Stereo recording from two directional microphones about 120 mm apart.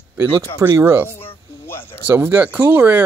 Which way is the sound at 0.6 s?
25° right (ahead or behind).